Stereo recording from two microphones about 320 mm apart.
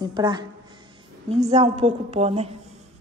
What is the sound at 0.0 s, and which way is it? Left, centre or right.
A woman's voice, centre.